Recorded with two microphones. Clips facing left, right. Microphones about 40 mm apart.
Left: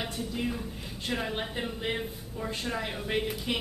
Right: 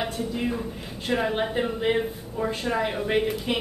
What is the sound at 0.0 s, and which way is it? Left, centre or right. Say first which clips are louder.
A woman's voice: right 5 dB; centre.